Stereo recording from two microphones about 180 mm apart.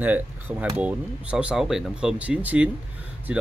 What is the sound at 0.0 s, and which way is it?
Speech, 10° right (ahead or behind).